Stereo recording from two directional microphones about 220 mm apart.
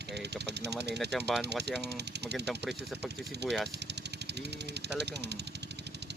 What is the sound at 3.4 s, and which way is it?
Speech, 50° right (ahead or behind).